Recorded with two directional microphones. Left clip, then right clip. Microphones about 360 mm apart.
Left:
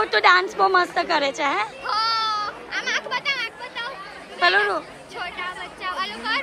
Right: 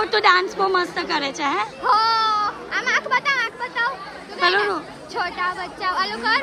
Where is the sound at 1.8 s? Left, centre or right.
Right.